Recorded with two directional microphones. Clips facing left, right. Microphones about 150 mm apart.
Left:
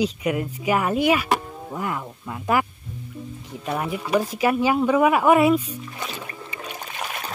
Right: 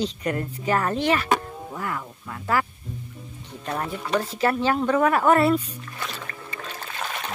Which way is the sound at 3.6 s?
10° left (ahead or behind).